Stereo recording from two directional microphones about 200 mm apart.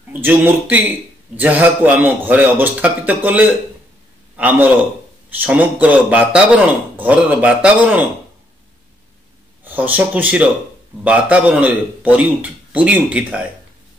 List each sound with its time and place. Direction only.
0.1 s a man's voice: 10° right (ahead or behind)
9.7 s a man's voice: 10° right (ahead or behind)